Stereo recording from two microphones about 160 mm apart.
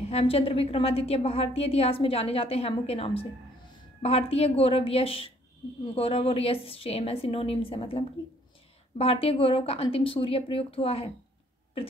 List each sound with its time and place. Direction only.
0.1 s a woman's voice: 40° left (ahead or behind)